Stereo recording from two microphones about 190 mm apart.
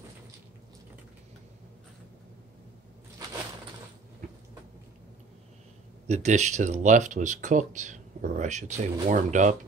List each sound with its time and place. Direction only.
6.0 s speech: 35° right (ahead or behind)